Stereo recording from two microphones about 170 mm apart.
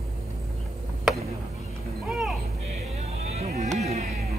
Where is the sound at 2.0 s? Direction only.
5° right (ahead or behind).